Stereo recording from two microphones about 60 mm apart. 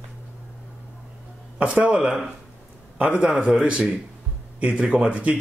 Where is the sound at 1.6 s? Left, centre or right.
Right.